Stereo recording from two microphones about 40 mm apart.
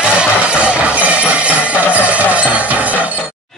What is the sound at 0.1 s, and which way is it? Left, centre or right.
Music, right.